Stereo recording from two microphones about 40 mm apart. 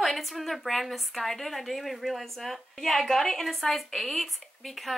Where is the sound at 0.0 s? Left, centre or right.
Centre.